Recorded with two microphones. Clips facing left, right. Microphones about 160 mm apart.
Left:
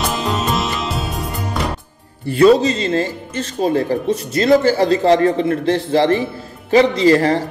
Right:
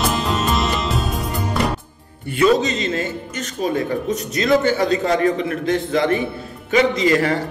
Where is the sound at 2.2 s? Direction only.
35° left (ahead or behind).